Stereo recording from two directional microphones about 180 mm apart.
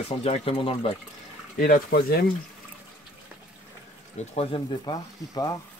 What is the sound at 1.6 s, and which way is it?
Speech, 55° left (ahead or behind).